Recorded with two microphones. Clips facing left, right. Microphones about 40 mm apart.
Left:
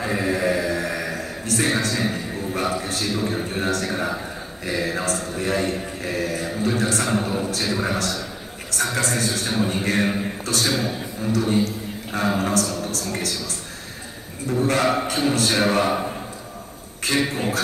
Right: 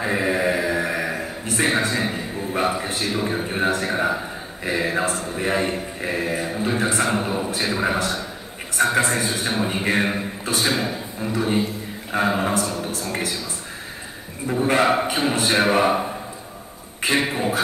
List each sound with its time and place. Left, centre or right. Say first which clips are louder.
0.0 s a sound: right 1 dB; centre
4.6 s mantra: right 2 dB; right
8.7 s a man's voice: right 4 dB; right
14.4 s mantra: right 1 dB; right